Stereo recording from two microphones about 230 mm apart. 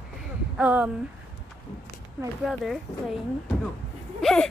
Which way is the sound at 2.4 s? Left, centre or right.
Centre.